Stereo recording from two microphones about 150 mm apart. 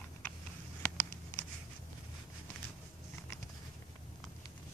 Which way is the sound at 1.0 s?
15° left (ahead or behind).